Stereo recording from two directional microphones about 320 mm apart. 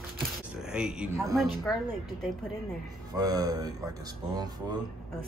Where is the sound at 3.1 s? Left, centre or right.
Centre.